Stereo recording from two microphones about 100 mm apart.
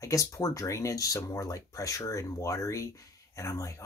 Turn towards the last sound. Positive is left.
turn(degrees=30)  # may be behind; listen again after turning